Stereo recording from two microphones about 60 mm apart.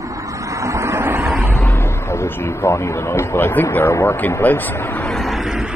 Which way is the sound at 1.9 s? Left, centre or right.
Left.